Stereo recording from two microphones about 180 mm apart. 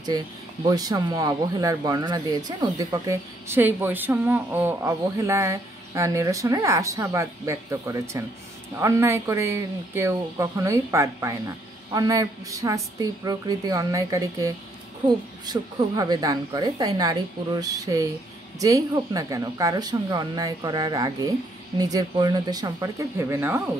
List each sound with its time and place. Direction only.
0.1 s speech: 20° right (ahead or behind)